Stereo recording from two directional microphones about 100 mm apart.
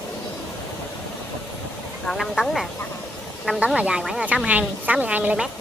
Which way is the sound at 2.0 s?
5° left (ahead or behind).